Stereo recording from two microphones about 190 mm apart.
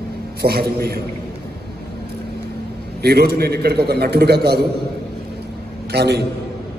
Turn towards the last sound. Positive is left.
turn(degrees=-60)  # may be behind; listen again after turning